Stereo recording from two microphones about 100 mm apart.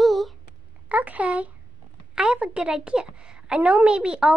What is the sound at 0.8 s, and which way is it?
A woman's voice, 15° right (ahead or behind).